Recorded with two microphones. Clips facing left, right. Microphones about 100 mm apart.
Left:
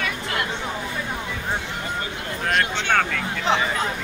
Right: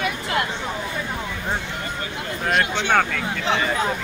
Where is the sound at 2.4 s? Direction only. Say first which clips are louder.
Right 1 dB; 10° right (ahead or behind).